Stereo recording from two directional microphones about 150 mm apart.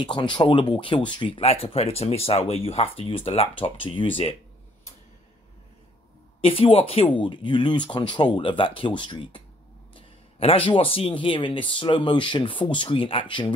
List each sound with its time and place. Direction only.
0.0 s speech: 30° left (ahead or behind)
6.4 s speech: 40° left (ahead or behind)